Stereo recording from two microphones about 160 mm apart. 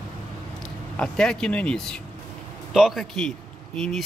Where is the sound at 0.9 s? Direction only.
5° left (ahead or behind).